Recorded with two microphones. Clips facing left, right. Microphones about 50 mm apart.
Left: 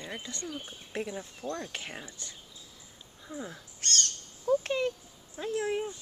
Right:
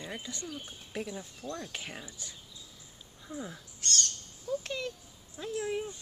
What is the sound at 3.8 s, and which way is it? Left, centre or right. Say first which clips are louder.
Bird: left 1 dB; left.